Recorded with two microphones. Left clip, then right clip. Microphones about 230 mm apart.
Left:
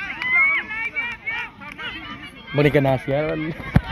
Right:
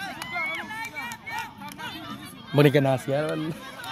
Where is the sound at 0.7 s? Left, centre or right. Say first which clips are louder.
Left 8 dB; right.